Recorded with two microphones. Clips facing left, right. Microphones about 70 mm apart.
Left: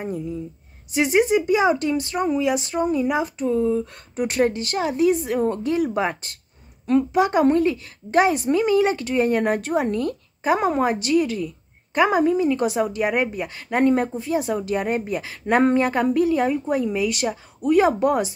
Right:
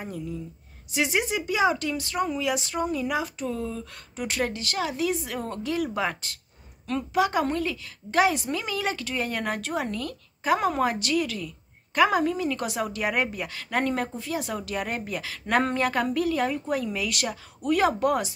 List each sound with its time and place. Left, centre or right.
0.9 s a woman's voice: left
6.9 s a woman's voice: left